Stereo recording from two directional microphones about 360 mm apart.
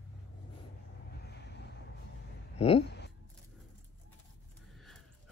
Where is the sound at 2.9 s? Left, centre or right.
Left.